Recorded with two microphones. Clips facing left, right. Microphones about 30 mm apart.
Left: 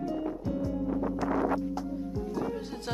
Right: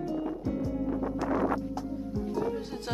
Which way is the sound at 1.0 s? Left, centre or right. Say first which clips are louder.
Left 1 dB; centre.